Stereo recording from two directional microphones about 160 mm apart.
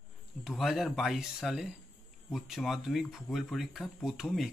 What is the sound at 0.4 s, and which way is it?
Speech, centre (ahead or behind).